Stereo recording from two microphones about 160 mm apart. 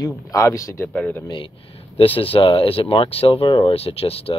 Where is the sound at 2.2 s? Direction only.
35° left (ahead or behind).